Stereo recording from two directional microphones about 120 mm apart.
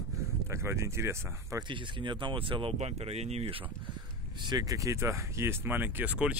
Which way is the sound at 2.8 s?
60° right (ahead or behind).